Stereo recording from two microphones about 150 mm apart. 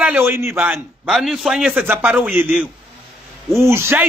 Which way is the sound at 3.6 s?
15° right (ahead or behind).